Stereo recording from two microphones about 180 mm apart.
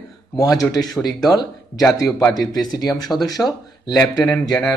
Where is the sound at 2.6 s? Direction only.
20° left (ahead or behind).